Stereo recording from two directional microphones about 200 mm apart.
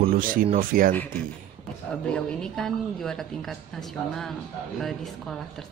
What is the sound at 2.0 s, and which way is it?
Speech, 5° left (ahead or behind).